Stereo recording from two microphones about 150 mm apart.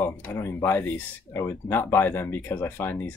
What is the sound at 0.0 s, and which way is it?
Speech, 15° left (ahead or behind).